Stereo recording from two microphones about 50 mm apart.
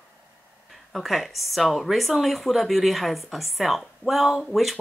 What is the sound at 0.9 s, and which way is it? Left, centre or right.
Speech, centre.